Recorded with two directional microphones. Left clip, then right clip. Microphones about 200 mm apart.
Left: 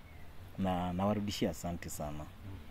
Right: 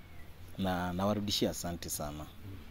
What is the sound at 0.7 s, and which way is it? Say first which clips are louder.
Speech: right 1 dB; 5° left (ahead or behind).